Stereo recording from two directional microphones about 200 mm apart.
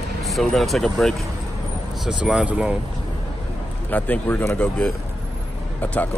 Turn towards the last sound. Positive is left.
turn(degrees=10)  # may be behind; listen again after turning